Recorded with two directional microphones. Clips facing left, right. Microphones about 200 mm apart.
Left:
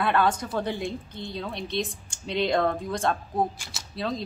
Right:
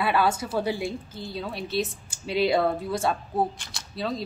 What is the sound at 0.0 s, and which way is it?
A woman's voice, 5° right (ahead or behind).